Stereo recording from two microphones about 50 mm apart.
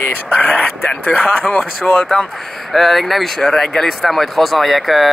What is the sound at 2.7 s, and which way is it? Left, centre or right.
Speech, centre.